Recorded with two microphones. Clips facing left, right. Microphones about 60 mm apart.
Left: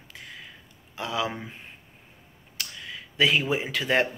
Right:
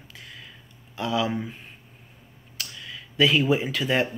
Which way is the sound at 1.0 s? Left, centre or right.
Left.